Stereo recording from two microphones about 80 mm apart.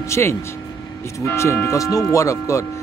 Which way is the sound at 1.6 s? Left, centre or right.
Left.